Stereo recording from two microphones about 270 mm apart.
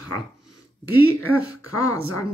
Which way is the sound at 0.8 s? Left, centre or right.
Left.